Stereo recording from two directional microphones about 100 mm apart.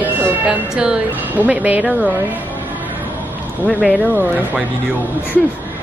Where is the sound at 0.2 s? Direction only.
15° right (ahead or behind).